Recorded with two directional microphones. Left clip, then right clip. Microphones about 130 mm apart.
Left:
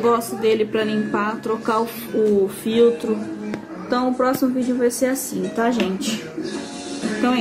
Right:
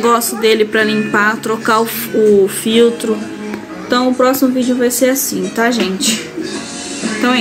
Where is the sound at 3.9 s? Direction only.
15° right (ahead or behind).